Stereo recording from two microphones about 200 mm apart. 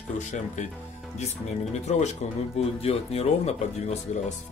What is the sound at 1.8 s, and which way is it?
Speech, 35° left (ahead or behind).